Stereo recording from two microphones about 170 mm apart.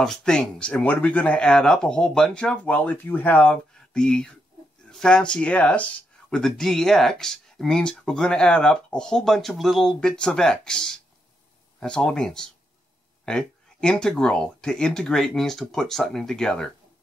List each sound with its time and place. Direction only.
0.0 s speech: 5° left (ahead or behind)